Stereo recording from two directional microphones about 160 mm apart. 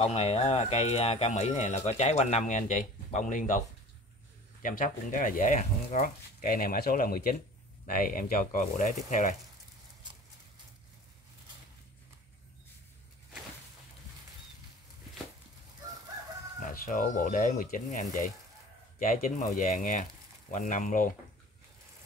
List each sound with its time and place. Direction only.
0.0 s speech: 40° left (ahead or behind)
16.6 s speech: 60° left (ahead or behind)
18.9 s speech: 50° left (ahead or behind)